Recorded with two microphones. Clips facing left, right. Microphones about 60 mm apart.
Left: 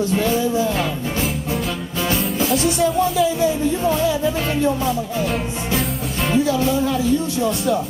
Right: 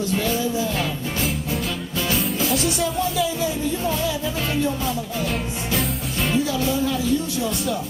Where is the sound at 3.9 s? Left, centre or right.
Centre.